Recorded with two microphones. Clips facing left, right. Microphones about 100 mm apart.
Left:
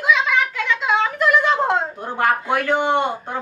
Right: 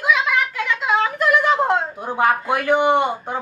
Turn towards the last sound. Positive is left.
turn(degrees=-15)  # may be behind; listen again after turning